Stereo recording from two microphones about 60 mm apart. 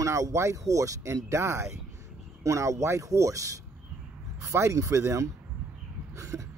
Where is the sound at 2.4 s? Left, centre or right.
Right.